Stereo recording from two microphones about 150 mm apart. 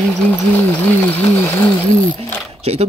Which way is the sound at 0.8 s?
15° left (ahead or behind).